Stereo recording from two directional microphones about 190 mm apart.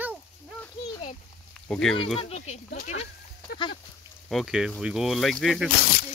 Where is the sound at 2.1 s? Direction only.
35° left (ahead or behind).